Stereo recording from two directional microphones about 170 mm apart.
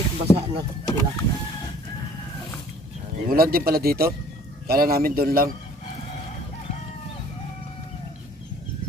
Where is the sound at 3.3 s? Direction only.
60° right (ahead or behind).